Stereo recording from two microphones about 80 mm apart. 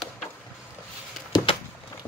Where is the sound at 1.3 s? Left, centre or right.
Left.